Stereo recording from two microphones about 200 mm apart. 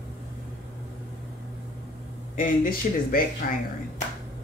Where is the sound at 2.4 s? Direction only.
45° left (ahead or behind).